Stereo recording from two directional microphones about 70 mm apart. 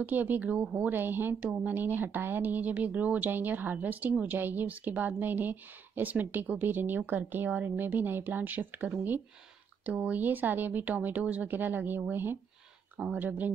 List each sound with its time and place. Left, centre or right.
0.0 s a woman's voice: right